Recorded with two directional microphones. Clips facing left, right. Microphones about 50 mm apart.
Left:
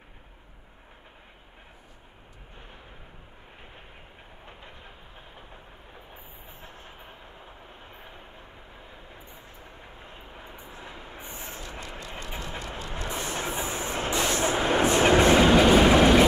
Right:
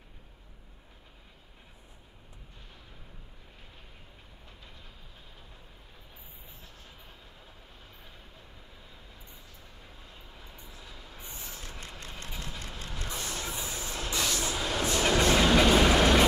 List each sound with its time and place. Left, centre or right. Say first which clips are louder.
4.5 s train: left 6 dB; left